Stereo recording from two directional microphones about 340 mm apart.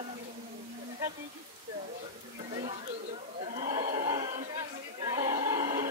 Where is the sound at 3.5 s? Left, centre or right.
Right.